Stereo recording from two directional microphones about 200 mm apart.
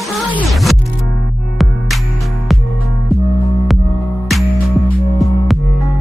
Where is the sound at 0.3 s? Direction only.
Centre (ahead or behind).